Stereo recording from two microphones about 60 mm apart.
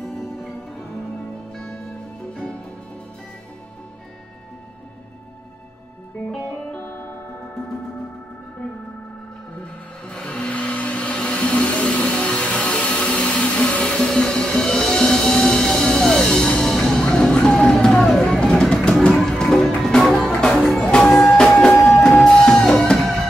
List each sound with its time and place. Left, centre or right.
0.0 s music: centre
1.5 s music: centre
6.7 s music: left
10.0 s a sound: centre
17.7 s music: centre